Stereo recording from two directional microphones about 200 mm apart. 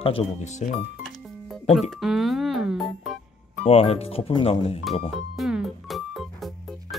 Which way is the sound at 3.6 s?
30° left (ahead or behind).